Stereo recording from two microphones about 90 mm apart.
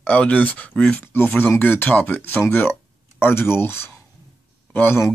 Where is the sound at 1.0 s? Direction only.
25° left (ahead or behind).